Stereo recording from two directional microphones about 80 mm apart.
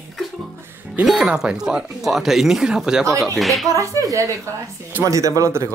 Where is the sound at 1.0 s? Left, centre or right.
Centre.